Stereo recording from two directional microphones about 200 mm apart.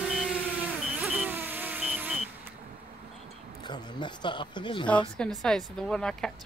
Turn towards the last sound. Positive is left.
turn(degrees=5)  # may be behind; listen again after turning